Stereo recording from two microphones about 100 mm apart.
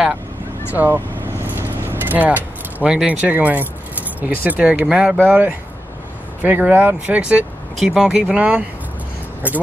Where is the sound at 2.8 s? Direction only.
10° right (ahead or behind).